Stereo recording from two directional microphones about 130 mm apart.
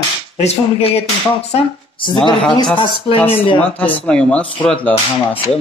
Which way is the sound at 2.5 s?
40° left (ahead or behind).